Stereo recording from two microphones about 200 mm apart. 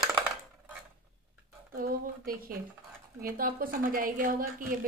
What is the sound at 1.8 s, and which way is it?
A woman's voice, 45° right (ahead or behind).